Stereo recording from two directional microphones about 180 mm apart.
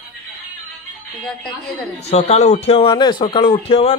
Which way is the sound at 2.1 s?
35° left (ahead or behind).